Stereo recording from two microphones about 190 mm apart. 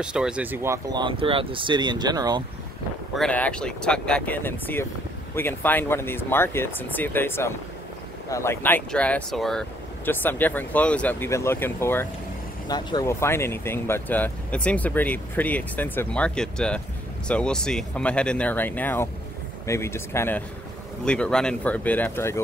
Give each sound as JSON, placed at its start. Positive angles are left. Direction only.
{"t": 0.0, "sound": "speech", "side_deg": -5}
{"t": 3.2, "sound": "speech", "side_deg": 5}